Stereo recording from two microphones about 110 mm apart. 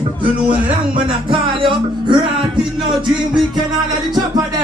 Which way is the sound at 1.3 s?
50° right (ahead or behind).